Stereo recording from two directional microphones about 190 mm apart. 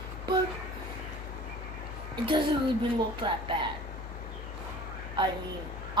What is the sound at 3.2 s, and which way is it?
Speech, 25° right (ahead or behind).